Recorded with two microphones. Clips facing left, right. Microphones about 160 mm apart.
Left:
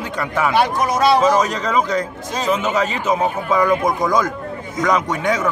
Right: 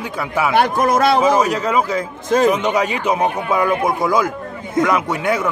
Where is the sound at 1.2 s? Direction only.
10° right (ahead or behind).